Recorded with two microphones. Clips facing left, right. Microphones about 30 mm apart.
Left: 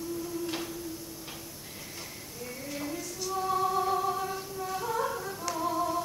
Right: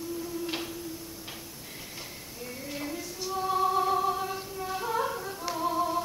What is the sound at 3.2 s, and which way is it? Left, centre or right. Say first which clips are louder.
Music: right 2 dB; centre.